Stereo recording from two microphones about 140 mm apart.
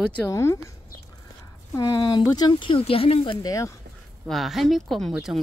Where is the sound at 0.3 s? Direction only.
20° left (ahead or behind).